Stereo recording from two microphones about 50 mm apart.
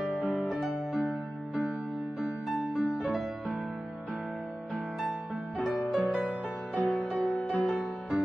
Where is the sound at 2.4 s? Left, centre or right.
Centre.